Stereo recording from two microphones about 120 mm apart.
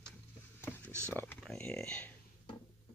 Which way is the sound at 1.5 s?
5° left (ahead or behind).